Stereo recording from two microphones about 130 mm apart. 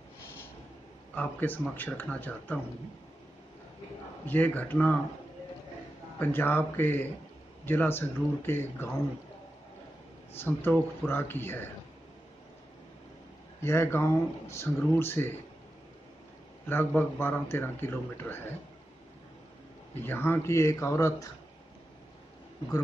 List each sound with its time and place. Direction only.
1.1 s a man's voice: 10° left (ahead or behind)
4.3 s a man's voice: 15° left (ahead or behind)
6.1 s a man's voice: 15° left (ahead or behind)
10.4 s a man's voice: 15° left (ahead or behind)
13.6 s speech: 20° left (ahead or behind)
16.6 s a man's voice: 15° left (ahead or behind)
20.1 s speech: 15° left (ahead or behind)